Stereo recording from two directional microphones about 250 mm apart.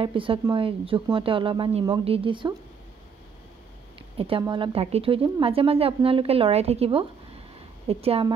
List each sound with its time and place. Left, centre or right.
0.0 s a woman's voice: right
4.2 s a woman's voice: centre